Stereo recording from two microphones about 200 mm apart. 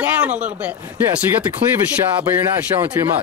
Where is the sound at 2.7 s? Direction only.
25° right (ahead or behind).